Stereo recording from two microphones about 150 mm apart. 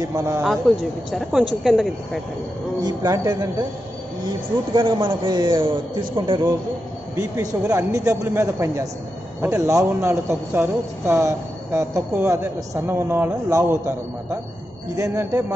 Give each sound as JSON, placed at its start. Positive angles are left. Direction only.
{"t": 0.0, "sound": "a man's voice", "side_deg": -20}
{"t": 1.1, "sound": "speech", "side_deg": 0}
{"t": 2.8, "sound": "a man's voice", "side_deg": -25}
{"t": 4.7, "sound": "a man's voice", "side_deg": -35}
{"t": 7.2, "sound": "a man's voice", "side_deg": -20}